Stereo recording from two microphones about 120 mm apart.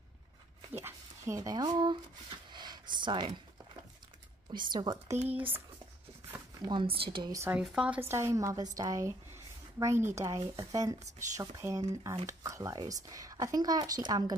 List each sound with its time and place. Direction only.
0.7 s speech: 20° right (ahead or behind)
2.5 s a sound: 35° right (ahead or behind)
4.5 s speech: 35° right (ahead or behind)
5.1 s speech: 60° right (ahead or behind)
6.6 s speech: 40° right (ahead or behind)
7.5 s speech: 10° right (ahead or behind)
8.0 s a woman's voice: 20° right (ahead or behind)